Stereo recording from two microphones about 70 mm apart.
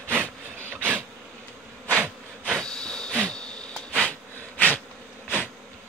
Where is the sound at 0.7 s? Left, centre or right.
Right.